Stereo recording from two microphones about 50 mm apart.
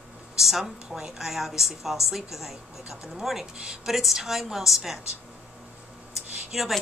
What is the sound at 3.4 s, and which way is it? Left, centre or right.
Speech, centre.